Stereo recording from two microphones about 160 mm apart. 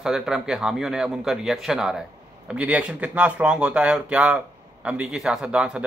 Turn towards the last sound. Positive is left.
turn(degrees=-5)  # may be behind; listen again after turning